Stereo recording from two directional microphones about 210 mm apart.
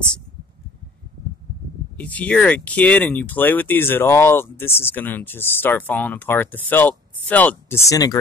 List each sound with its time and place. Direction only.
2.0 s speech: 5° left (ahead or behind)